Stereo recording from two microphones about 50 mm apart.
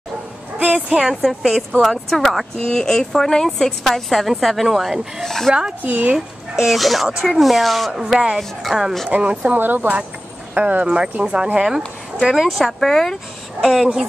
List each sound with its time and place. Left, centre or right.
0.6 s a sound: right
1.0 s a woman's voice: centre
5.8 s speech: right
6.1 s a child's voice: centre
7.9 s speech: centre
9.1 s speech: right
12.2 s a woman's voice: centre